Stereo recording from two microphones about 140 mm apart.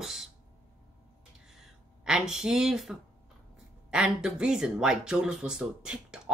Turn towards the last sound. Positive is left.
turn(degrees=-5)  # may be behind; listen again after turning